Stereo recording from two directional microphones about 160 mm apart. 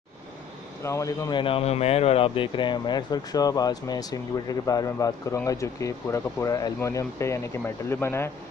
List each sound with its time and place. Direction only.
0.8 s speech: 20° left (ahead or behind)
1.4 s speech: 35° left (ahead or behind); by 8.3 s 15° left (ahead or behind)